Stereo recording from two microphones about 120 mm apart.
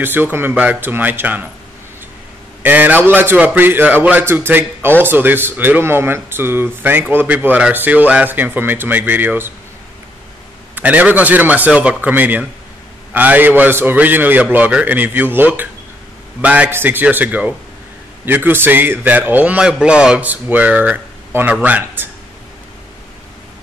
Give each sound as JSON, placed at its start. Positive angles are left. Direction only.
{"t": 0.0, "sound": "speech", "side_deg": -15}
{"t": 2.6, "sound": "speech", "side_deg": -15}
{"t": 10.7, "sound": "speech", "side_deg": -15}